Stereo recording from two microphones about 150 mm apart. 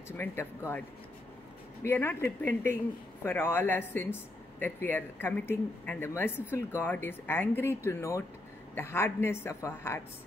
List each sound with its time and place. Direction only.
0.2 s speech: 15° left (ahead or behind)